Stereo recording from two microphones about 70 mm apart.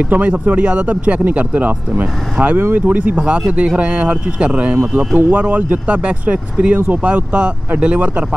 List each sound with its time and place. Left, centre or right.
0.1 s speech: right